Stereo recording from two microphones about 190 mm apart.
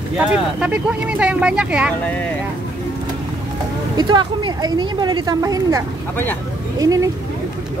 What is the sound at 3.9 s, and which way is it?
A woman's voice, 25° right (ahead or behind).